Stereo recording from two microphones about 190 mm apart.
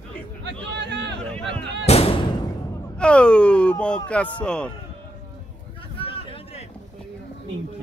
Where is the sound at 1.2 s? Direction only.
5° left (ahead or behind).